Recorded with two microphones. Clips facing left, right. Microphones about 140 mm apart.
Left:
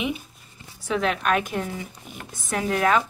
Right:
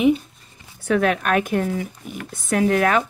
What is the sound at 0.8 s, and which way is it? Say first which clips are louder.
Speech: right 4 dB; 55° right (ahead or behind).